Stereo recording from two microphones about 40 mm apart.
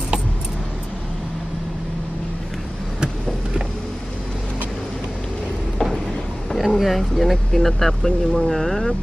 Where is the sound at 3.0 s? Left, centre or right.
Right.